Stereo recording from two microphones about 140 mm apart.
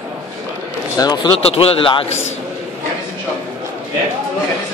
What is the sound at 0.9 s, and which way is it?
Speech, 30° left (ahead or behind).